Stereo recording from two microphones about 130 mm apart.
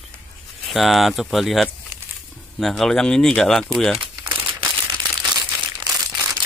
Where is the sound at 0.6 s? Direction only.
Centre (ahead or behind).